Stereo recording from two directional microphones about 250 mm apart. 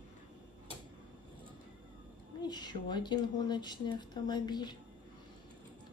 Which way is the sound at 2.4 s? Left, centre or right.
Centre.